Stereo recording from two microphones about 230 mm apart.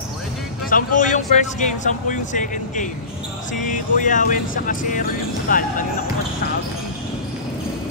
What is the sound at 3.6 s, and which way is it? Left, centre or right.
Speech, left.